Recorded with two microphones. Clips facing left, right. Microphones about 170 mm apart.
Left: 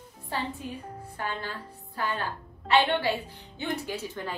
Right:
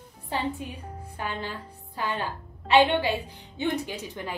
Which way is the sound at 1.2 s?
15° right (ahead or behind).